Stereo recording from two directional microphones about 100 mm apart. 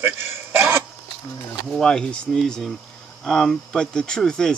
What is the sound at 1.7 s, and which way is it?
Speech, 5° left (ahead or behind).